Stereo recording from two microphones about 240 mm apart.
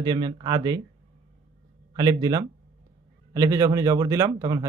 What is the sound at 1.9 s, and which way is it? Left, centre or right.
Speech, centre.